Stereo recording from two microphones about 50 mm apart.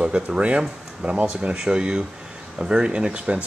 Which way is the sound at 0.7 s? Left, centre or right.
Centre.